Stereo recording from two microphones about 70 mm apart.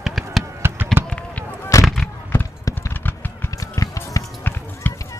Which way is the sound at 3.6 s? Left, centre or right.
Left.